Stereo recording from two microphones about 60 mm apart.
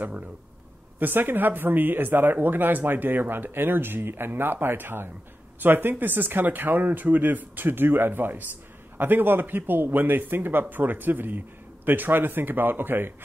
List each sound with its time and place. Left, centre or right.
0.9 s a man's voice: right